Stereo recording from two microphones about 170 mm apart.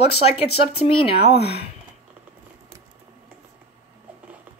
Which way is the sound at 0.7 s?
35° left (ahead or behind).